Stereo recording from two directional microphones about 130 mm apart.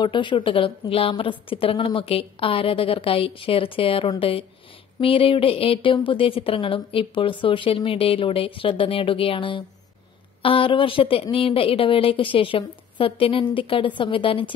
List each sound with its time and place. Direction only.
0.0 s speech: 40° left (ahead or behind)